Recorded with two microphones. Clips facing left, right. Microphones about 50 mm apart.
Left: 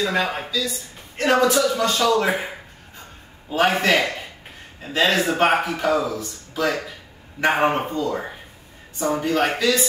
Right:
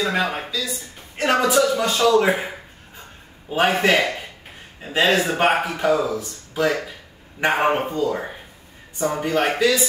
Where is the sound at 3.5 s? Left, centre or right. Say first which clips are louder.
Right 1 dB; centre.